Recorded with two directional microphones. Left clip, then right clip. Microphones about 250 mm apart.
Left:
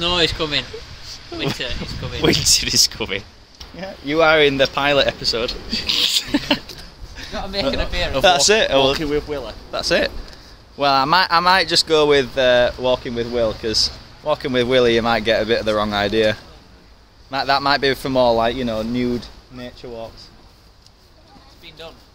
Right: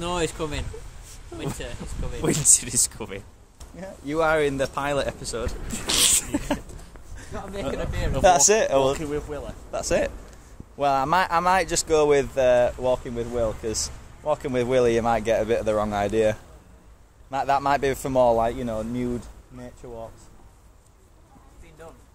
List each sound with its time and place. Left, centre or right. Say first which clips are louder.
0.0 s speech: left 9 dB; centre
2.2 s speech: left 7 dB; centre
8.2 s speech: left 3 dB; centre
8.9 s speech: left 8 dB; left
9.7 s speech: left 5 dB; centre